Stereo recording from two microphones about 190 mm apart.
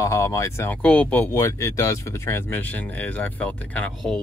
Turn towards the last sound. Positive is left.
turn(degrees=5)  # may be behind; listen again after turning